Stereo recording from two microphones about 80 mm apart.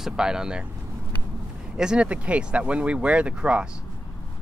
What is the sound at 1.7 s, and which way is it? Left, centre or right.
Speech, centre.